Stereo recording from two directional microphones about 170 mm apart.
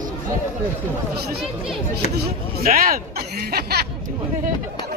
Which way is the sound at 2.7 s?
60° right (ahead or behind).